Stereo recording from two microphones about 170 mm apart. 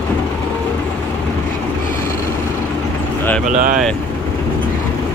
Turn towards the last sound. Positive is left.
turn(degrees=-50)  # may be behind; listen again after turning